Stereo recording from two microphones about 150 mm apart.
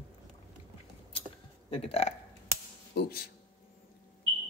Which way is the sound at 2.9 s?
90° left.